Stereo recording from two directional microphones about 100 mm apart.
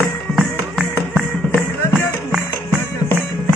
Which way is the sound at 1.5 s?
20° left (ahead or behind).